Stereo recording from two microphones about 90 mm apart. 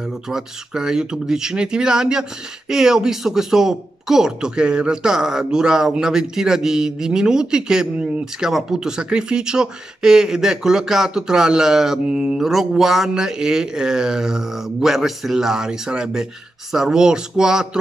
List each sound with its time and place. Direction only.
0.3 s speech: 5° right (ahead or behind)